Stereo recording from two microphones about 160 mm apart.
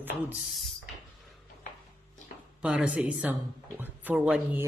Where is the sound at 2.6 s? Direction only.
5° right (ahead or behind).